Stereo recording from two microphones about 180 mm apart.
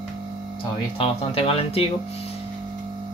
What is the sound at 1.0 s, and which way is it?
Speech, 35° left (ahead or behind).